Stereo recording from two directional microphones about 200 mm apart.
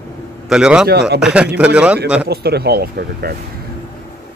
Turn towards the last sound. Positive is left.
turn(degrees=-50)  # may be behind; listen again after turning